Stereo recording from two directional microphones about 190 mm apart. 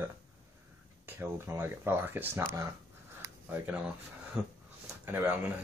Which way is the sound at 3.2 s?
10° right (ahead or behind).